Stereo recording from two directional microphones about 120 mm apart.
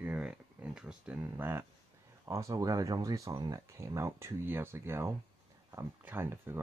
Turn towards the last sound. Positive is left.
turn(degrees=-20)  # may be behind; listen again after turning